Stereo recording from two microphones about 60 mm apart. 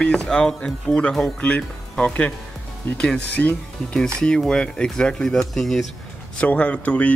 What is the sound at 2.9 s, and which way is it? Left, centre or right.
Speech, centre.